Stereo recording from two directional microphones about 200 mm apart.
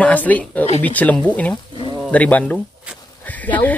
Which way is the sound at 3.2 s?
10° left (ahead or behind).